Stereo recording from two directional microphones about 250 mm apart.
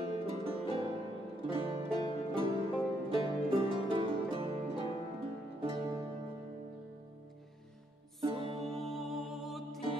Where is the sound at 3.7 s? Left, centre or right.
Right.